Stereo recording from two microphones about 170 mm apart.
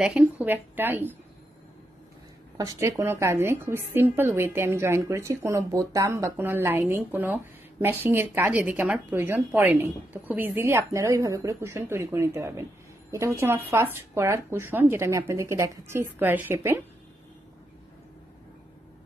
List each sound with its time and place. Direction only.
0.0 s a woman's voice: 5° right (ahead or behind)
2.5 s a woman's voice: 20° right (ahead or behind)